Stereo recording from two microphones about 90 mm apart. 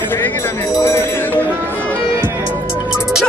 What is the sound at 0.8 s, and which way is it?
Music, 25° left (ahead or behind).